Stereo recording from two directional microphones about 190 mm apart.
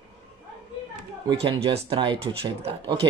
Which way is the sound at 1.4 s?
30° right (ahead or behind).